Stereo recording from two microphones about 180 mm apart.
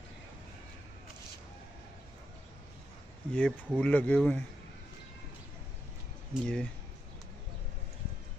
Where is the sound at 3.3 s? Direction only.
10° left (ahead or behind).